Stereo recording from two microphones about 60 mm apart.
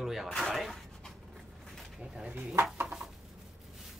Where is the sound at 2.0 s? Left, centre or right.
Centre.